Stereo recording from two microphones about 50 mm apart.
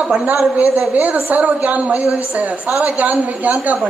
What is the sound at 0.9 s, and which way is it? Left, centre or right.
A woman's voice, right.